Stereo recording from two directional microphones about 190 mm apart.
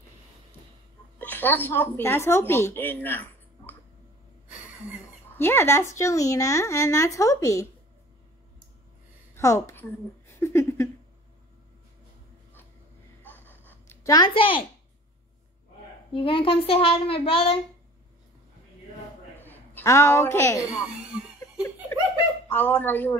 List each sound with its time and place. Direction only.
1.2 s speech: 10° left (ahead or behind)
5.4 s speech: 10° left (ahead or behind)
9.3 s a sound: 15° left (ahead or behind)
13.2 s a sound: 10° left (ahead or behind); by 14.6 s 25° left (ahead or behind)
16.1 s a child's voice: 25° left (ahead or behind)
19.3 s a man's voice: 10° left (ahead or behind)
20.8 s speech: 5° right (ahead or behind)
21.9 s laughter: 15° left (ahead or behind)
22.5 s speech: 10° left (ahead or behind)